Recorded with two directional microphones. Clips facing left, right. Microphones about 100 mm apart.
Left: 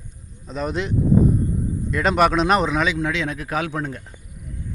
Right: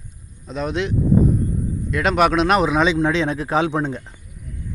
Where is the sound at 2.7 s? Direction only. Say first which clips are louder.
Right 4 dB; 25° right (ahead or behind).